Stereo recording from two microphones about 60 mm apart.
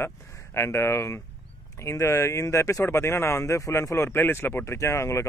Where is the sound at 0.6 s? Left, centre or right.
Left.